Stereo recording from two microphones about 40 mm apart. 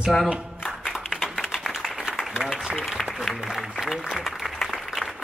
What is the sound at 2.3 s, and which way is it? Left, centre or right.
Applause, centre.